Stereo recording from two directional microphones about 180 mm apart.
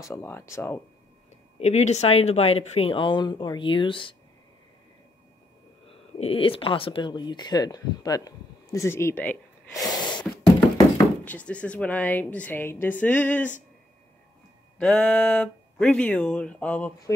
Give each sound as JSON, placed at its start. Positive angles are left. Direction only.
{"t": 0.0, "sound": "speech", "side_deg": 15}
{"t": 1.6, "sound": "speech", "side_deg": 40}
{"t": 6.1, "sound": "speech", "side_deg": 30}
{"t": 9.8, "sound": "sneeze", "side_deg": 20}
{"t": 11.0, "sound": "speech", "side_deg": 10}
{"t": 14.8, "sound": "speech", "side_deg": 5}